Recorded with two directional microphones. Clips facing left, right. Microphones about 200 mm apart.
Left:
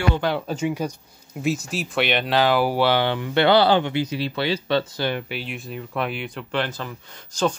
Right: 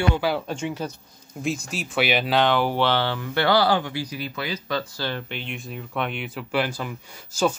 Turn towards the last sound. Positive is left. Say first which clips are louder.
# even
turn(degrees=-10)  # may be behind; listen again after turning